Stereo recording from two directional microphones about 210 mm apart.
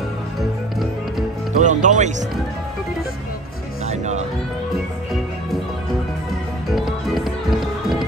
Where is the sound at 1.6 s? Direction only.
35° right (ahead or behind).